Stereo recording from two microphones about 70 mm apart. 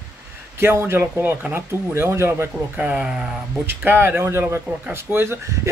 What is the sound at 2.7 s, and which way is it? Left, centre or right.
Speech, centre.